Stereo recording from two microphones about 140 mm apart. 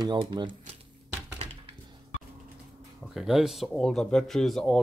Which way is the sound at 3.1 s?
Centre (ahead or behind).